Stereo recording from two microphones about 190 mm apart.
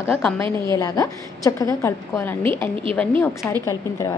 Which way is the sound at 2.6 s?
30° right (ahead or behind).